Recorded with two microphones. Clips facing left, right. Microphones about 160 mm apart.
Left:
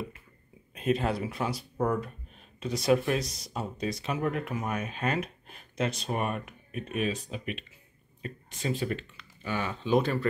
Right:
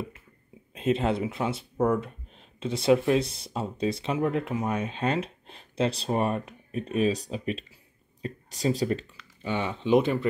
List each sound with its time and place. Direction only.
0.7 s speech: 25° right (ahead or behind)
9.4 s speech: 25° right (ahead or behind)